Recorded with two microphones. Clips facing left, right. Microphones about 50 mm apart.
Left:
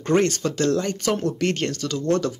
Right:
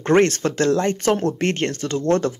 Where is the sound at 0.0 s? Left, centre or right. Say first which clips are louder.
Right 4 dB; right.